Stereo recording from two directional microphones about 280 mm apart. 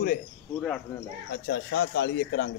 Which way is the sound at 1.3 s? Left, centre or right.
Left.